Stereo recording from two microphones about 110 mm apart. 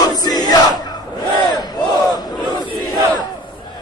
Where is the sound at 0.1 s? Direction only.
40° left (ahead or behind).